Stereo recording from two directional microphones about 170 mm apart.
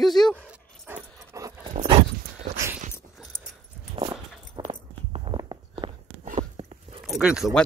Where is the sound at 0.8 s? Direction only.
15° right (ahead or behind).